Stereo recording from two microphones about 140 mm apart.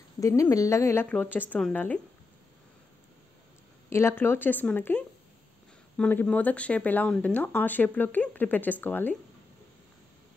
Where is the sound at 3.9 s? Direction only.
20° left (ahead or behind).